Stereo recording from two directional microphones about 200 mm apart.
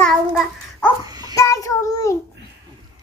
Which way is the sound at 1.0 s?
20° right (ahead or behind).